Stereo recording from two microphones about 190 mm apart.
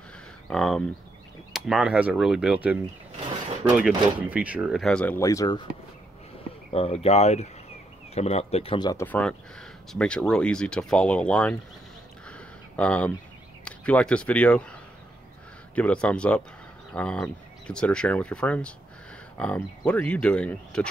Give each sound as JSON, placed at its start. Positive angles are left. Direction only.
{"t": 0.5, "sound": "speech", "side_deg": 0}
{"t": 6.7, "sound": "speech", "side_deg": 30}
{"t": 9.0, "sound": "speech", "side_deg": 5}
{"t": 12.3, "sound": "a sound", "side_deg": 5}
{"t": 13.7, "sound": "speech", "side_deg": 5}